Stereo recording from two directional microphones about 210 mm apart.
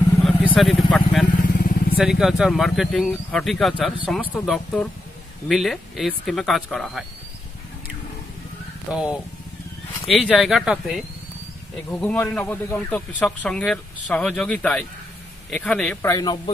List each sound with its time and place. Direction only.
0.2 s vehicle: centre (ahead or behind)
0.6 s speech: centre (ahead or behind)
1.4 s vehicle: 45° left (ahead or behind)
2.0 s speech: centre (ahead or behind)
8.9 s speech: 5° right (ahead or behind)
11.9 s speech: 5° left (ahead or behind)